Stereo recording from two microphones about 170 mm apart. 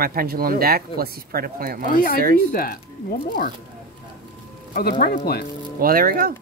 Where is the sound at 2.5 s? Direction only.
60° left (ahead or behind).